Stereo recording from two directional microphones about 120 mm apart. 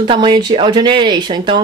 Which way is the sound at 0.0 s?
40° right (ahead or behind).